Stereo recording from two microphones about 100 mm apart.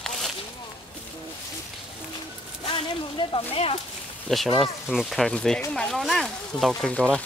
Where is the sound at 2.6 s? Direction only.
55° left (ahead or behind); by 3.8 s 70° left (ahead or behind).